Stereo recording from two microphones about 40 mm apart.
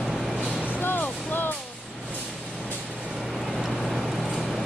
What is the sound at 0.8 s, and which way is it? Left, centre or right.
Vehicle, left.